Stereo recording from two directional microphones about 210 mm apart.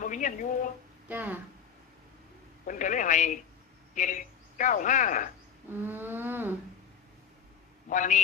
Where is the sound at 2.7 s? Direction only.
35° left (ahead or behind).